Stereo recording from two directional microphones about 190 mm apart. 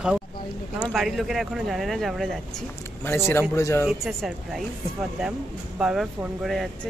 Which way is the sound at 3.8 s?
Centre (ahead or behind).